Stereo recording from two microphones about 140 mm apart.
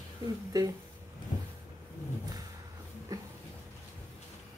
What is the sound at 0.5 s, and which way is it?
Speech, 30° right (ahead or behind).